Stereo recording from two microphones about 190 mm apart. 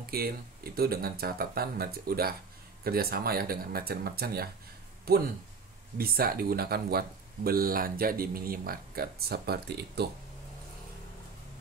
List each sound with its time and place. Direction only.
0.0 s speech: 55° right (ahead or behind)